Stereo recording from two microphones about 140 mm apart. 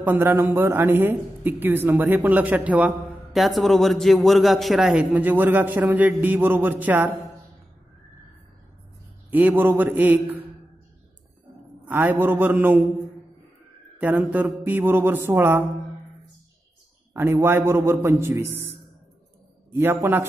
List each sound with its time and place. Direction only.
0.0 s a man's voice: 10° right (ahead or behind)
9.3 s a man's voice: 10° right (ahead or behind)
11.8 s a man's voice: 10° right (ahead or behind)
13.9 s a man's voice: 10° right (ahead or behind)
17.1 s a man's voice: 20° right (ahead or behind)
19.7 s a man's voice: 15° right (ahead or behind)